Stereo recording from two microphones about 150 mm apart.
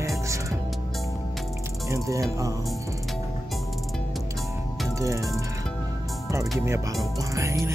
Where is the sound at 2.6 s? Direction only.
Centre (ahead or behind).